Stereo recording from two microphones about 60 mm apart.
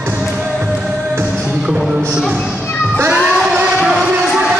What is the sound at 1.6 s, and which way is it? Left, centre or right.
Music, centre.